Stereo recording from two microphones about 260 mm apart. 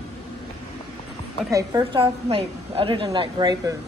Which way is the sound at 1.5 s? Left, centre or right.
Centre.